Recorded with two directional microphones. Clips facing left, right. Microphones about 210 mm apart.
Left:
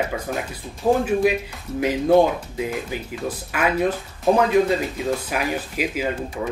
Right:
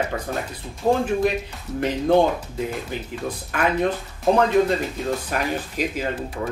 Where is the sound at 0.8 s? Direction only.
15° right (ahead or behind).